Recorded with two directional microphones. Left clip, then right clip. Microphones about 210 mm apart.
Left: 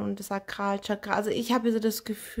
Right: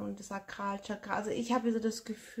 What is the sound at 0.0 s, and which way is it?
Speech, 45° left (ahead or behind).